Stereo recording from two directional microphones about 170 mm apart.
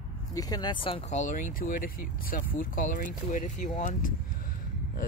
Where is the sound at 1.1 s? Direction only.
50° left (ahead or behind).